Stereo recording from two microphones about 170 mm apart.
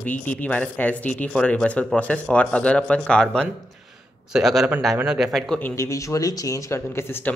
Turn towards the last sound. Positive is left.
turn(degrees=15)  # may be behind; listen again after turning